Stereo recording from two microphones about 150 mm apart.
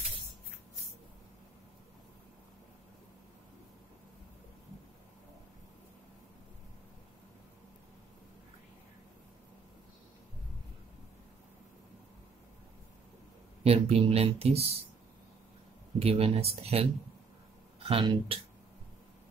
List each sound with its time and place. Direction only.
13.7 s speech: 40° right (ahead or behind)
16.0 s speech: 40° right (ahead or behind)